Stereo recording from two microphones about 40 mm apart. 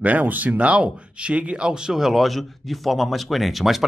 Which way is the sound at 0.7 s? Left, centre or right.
Right.